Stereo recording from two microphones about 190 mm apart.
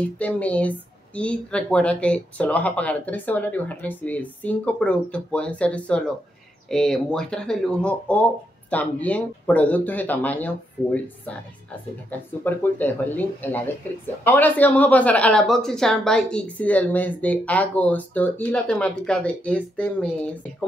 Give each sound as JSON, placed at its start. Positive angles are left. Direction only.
{"t": 0.2, "sound": "speech", "side_deg": 5}